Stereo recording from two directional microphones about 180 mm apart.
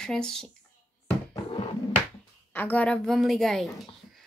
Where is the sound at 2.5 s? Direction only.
10° left (ahead or behind).